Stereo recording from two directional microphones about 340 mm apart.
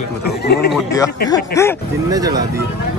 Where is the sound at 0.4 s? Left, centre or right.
Left.